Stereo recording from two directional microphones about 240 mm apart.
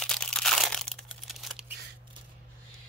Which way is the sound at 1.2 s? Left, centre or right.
Centre.